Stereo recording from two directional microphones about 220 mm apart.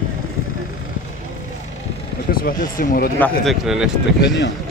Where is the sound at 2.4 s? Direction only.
40° left (ahead or behind).